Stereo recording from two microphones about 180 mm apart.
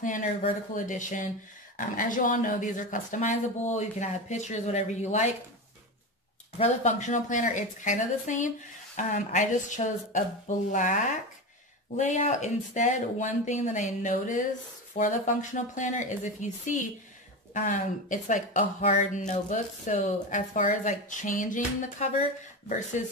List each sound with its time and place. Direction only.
0.0 s speech: 45° left (ahead or behind)
6.6 s speech: 40° left (ahead or behind)